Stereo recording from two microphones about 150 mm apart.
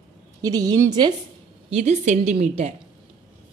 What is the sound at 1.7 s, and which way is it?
A woman's voice, 45° right (ahead or behind).